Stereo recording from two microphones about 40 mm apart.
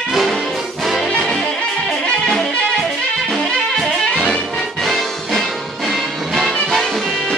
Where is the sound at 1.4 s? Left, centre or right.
Centre.